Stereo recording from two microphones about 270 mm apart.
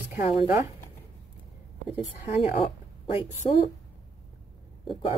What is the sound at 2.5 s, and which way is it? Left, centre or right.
Speech, centre.